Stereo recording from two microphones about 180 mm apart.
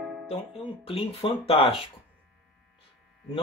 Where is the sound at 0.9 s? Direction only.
30° left (ahead or behind).